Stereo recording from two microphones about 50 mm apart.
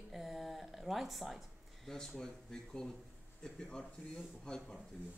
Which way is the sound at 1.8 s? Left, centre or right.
Centre.